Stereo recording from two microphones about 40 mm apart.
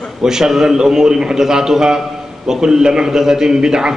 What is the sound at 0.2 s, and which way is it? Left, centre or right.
A man's voice, centre.